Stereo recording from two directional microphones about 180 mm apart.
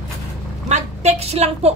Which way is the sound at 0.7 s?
35° right (ahead or behind).